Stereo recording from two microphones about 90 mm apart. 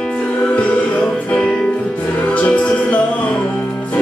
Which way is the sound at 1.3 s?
10° left (ahead or behind).